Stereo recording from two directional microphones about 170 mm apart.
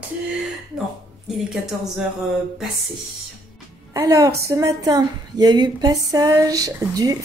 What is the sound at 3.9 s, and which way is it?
A woman's voice, 20° right (ahead or behind).